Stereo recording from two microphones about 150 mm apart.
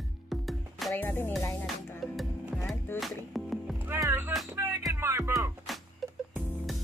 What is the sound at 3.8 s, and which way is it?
Music, 15° right (ahead or behind).